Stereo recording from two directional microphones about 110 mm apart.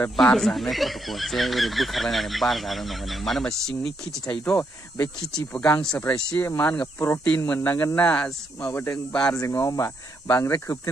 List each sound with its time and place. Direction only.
0.4 s speech: centre (ahead or behind)
4.3 s speech: 15° left (ahead or behind)
8.9 s speech: 10° left (ahead or behind)
9.3 s speech: 30° left (ahead or behind)